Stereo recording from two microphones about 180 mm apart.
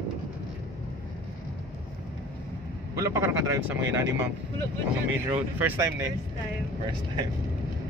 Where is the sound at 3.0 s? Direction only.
15° right (ahead or behind).